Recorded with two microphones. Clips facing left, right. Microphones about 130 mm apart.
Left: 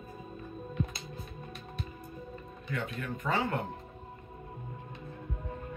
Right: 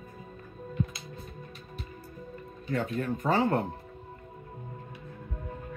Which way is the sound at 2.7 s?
35° right (ahead or behind).